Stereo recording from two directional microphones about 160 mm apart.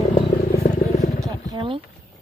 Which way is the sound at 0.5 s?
45° left (ahead or behind).